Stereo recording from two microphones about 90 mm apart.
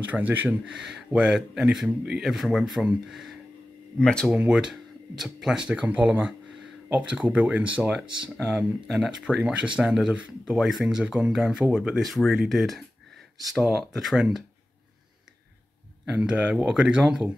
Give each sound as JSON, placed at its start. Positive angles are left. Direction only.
{"t": 0.1, "sound": "speech", "side_deg": -20}
{"t": 0.7, "sound": "speech", "side_deg": -10}
{"t": 4.0, "sound": "speech", "side_deg": 10}
{"t": 4.5, "sound": "speech", "side_deg": -10}
{"t": 16.1, "sound": "speech", "side_deg": -15}